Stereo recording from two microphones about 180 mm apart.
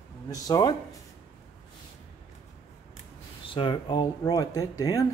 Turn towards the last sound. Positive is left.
turn(degrees=20)  # may be behind; listen again after turning